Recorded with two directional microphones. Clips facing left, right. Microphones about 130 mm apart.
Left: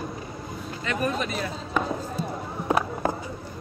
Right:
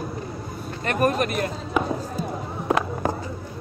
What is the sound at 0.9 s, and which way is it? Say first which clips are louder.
Speech: right 5 dB; 60° right (ahead or behind).